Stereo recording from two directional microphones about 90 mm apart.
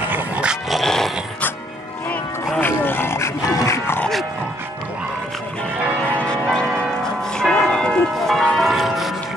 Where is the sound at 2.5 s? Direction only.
20° left (ahead or behind).